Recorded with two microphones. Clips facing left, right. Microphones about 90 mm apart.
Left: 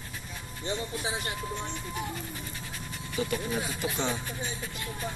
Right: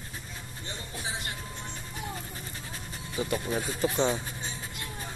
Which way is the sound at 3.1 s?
25° right (ahead or behind).